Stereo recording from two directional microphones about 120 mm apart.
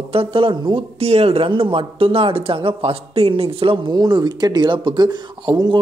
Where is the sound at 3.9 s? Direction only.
35° right (ahead or behind).